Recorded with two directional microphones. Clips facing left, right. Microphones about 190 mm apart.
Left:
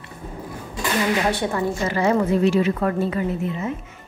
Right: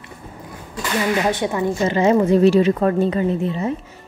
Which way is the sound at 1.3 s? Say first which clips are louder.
Right 2 dB; 15° right (ahead or behind).